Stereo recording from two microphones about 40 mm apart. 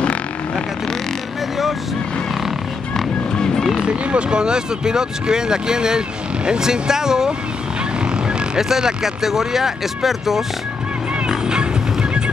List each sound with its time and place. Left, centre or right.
3.3 s vehicle: centre
3.8 s speech: right
8.5 s speech: centre
11.2 s music: right